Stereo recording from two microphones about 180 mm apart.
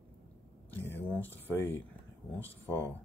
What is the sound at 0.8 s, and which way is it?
Speech, 10° left (ahead or behind).